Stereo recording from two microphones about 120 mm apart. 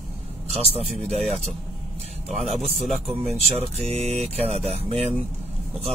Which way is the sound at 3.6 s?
60° right (ahead or behind).